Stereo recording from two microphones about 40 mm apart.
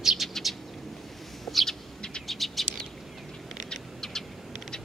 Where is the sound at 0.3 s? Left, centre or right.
Centre.